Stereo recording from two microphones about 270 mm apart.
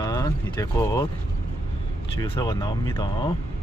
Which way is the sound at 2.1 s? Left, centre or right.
Centre.